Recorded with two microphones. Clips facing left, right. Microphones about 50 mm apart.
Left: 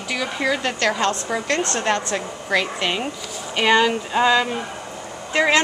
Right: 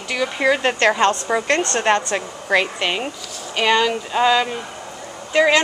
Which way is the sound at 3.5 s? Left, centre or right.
Centre.